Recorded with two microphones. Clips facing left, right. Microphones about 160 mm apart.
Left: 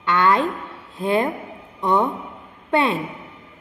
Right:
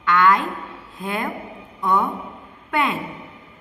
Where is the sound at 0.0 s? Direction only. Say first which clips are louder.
Even; 30° left (ahead or behind).